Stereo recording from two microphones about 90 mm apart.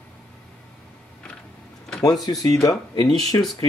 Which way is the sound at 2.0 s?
40° left (ahead or behind).